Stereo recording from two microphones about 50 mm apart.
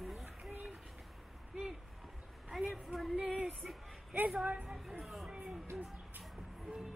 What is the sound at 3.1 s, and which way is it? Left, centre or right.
Female singing, right.